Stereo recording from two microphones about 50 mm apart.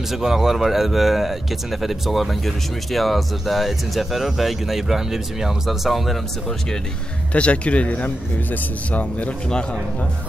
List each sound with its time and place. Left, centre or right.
0.1 s speech: centre
7.3 s speech: left